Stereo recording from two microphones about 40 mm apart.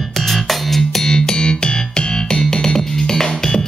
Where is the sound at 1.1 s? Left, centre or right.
Centre.